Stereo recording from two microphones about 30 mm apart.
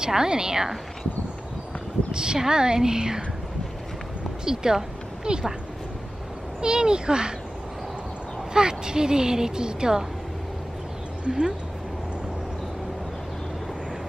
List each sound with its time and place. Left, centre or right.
0.0 s a woman's voice: right
2.1 s a woman's voice: right
4.5 s speech: right
6.6 s a woman's voice: right
8.5 s a woman's voice: right
11.2 s speech: right